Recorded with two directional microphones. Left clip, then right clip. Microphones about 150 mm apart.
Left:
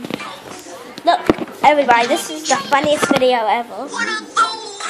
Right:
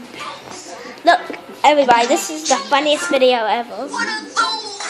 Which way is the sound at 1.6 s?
10° right (ahead or behind).